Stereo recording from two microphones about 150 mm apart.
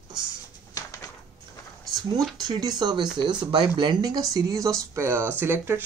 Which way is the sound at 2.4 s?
25° right (ahead or behind).